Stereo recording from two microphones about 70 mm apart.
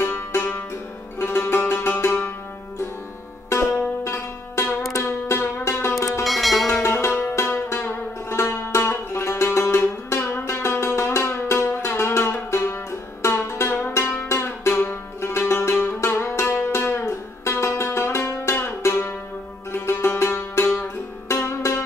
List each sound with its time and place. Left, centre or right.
0.0 s music: left
3.4 s music: left
6.2 s music: centre
6.8 s music: left
7.3 s music: left